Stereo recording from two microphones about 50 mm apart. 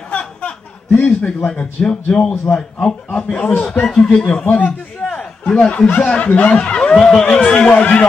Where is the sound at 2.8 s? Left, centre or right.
Left.